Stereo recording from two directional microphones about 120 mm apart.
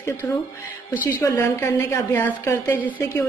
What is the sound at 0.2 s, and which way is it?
A woman's voice, 25° left (ahead or behind).